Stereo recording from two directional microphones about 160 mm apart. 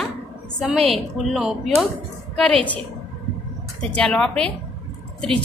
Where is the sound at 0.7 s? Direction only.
40° right (ahead or behind).